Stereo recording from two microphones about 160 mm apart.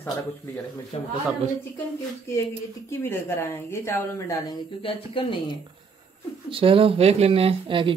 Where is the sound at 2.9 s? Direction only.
15° left (ahead or behind).